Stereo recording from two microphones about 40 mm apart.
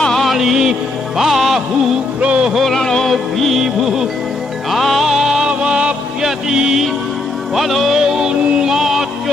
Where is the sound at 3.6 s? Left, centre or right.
Centre.